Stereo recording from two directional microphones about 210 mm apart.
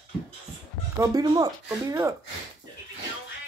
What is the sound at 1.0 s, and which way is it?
Speech, 20° right (ahead or behind).